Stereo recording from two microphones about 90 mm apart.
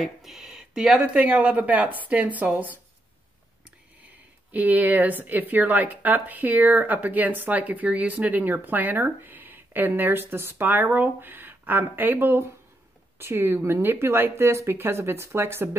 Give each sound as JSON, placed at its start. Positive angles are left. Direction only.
{"t": 0.0, "sound": "speech", "side_deg": 0}
{"t": 4.5, "sound": "speech", "side_deg": -20}